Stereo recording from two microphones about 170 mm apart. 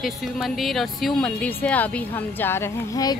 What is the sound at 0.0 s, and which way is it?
Speech, centre (ahead or behind).